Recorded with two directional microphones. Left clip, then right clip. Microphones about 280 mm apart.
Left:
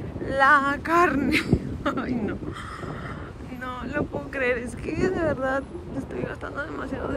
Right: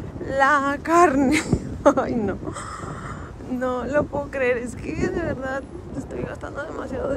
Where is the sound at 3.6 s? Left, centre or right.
Right.